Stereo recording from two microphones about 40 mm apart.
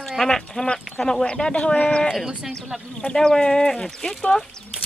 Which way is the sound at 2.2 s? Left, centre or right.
Centre.